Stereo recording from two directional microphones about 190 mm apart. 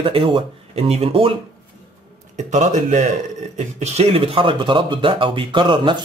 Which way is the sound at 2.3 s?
40° right (ahead or behind).